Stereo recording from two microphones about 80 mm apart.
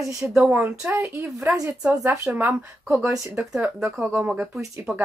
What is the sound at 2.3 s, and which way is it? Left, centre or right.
A woman's voice, centre.